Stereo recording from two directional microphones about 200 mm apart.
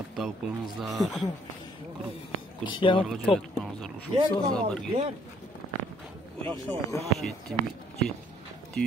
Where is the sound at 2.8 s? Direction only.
25° left (ahead or behind).